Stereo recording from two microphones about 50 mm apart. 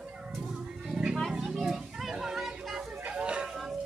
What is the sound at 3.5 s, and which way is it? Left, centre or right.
Music, centre.